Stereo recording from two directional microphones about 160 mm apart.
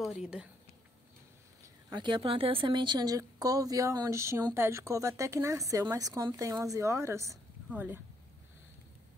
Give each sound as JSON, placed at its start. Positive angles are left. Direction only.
{"t": 0.0, "sound": "speech", "side_deg": -5}
{"t": 1.9, "sound": "speech", "side_deg": -30}